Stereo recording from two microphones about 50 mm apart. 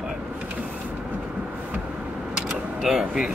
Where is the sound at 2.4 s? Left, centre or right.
Centre.